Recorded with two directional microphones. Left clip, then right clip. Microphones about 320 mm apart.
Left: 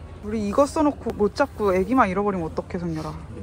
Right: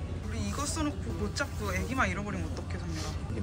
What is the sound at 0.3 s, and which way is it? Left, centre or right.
Speech, centre.